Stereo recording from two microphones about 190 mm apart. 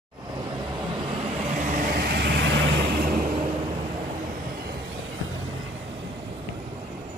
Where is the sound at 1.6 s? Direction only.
45° right (ahead or behind).